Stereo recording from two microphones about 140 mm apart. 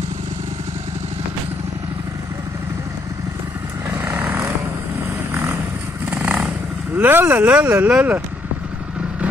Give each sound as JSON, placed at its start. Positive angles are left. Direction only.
{"t": 3.9, "sound": "vehicle", "side_deg": -20}
{"t": 7.0, "sound": "speech", "side_deg": -15}